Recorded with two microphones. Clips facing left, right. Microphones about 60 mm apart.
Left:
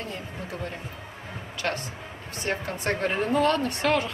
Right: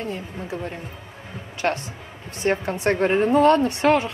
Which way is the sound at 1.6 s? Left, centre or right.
Right.